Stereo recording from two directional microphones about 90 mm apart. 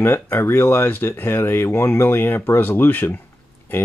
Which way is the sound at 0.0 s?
25° left (ahead or behind).